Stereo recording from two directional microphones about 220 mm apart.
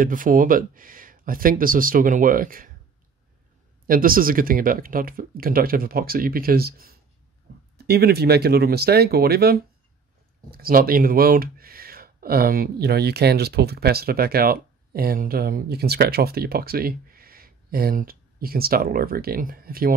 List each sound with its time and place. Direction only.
0.0 s speech: 40° right (ahead or behind)
3.8 s speech: 40° right (ahead or behind)